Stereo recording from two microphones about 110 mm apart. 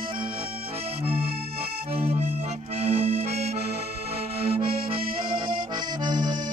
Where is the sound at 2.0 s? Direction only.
70° right (ahead or behind).